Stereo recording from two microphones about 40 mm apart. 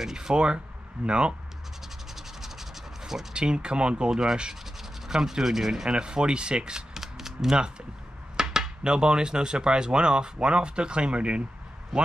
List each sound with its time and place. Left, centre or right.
0.0 s speech: centre
2.1 s scratch: centre
3.0 s a sound: centre
3.3 s speech: right
5.9 s speech: right